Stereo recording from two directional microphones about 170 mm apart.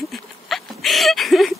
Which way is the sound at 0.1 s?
Centre (ahead or behind).